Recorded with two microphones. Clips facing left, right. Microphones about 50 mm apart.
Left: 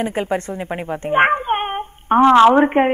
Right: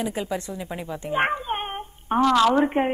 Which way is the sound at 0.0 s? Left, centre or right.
Left.